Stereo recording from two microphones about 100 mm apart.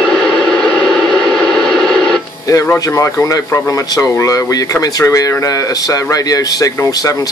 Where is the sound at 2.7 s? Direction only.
30° left (ahead or behind).